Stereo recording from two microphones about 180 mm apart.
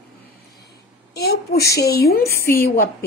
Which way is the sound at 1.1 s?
60° left (ahead or behind).